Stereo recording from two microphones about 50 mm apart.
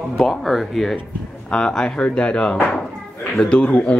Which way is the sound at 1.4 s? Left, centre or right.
Centre.